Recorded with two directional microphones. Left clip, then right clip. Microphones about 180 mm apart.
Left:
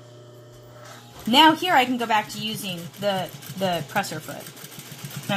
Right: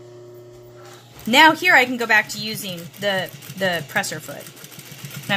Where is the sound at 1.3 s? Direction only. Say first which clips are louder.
Right 4 dB; 15° right (ahead or behind).